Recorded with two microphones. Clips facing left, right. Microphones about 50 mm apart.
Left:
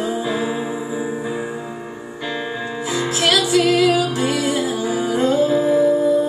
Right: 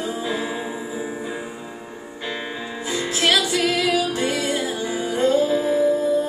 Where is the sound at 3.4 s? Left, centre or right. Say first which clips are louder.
Left 5 dB; centre.